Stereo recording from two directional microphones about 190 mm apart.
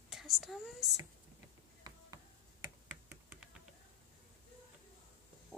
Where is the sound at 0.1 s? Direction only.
Centre (ahead or behind).